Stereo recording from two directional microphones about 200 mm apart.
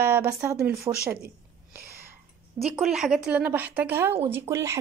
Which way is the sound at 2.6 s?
Centre (ahead or behind).